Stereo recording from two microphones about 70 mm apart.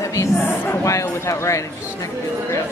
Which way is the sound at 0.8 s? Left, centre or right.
Left.